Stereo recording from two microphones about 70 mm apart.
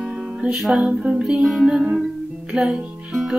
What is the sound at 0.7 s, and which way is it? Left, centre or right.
Music, centre.